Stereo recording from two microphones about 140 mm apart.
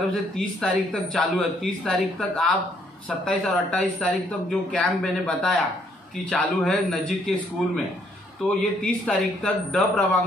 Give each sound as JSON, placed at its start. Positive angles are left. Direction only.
{"t": 0.1, "sound": "a man's voice", "side_deg": 5}
{"t": 8.8, "sound": "speech", "side_deg": 5}